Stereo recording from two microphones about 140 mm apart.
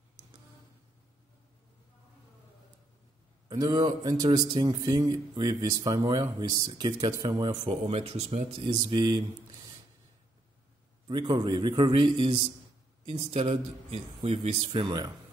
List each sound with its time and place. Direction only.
3.4 s speech: 25° right (ahead or behind)
7.6 s a man's voice: 45° right (ahead or behind)
11.1 s a man's voice: 30° right (ahead or behind)
13.0 s a man's voice: 50° right (ahead or behind)
14.7 s a man's voice: 30° right (ahead or behind)